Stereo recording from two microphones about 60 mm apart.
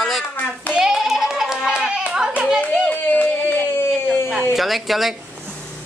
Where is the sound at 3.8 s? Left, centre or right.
Left.